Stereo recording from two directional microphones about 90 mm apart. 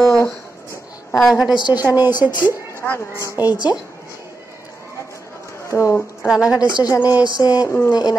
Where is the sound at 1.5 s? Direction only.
55° left (ahead or behind).